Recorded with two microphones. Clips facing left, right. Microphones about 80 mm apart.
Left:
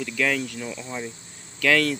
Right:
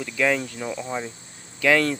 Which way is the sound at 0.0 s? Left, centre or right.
Centre.